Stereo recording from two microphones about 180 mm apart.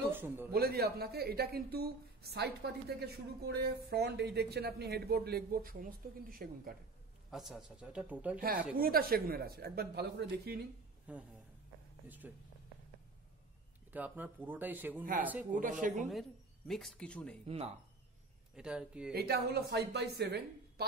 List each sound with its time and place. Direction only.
0.1 s speech: 10° right (ahead or behind)
0.5 s speech: 60° right (ahead or behind)
7.2 s speech: centre (ahead or behind)
8.7 s speech: 55° right (ahead or behind)
11.1 s speech: 5° right (ahead or behind)
12.2 s speech: 10° right (ahead or behind)
13.9 s speech: 10° right (ahead or behind)
15.8 s a woman's voice: 40° right (ahead or behind)
16.1 s speech: centre (ahead or behind)
17.5 s speech: 35° right (ahead or behind)
18.6 s speech: 5° right (ahead or behind)
19.1 s speech: 60° right (ahead or behind)